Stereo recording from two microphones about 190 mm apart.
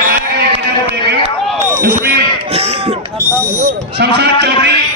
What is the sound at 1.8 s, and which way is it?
Speech, 55° right (ahead or behind).